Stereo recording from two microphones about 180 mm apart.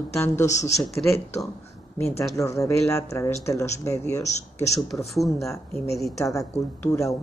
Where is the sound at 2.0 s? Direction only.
15° left (ahead or behind).